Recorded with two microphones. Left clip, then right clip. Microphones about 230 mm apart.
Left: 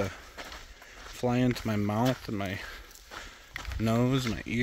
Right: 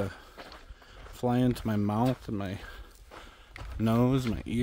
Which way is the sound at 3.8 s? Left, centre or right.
Centre.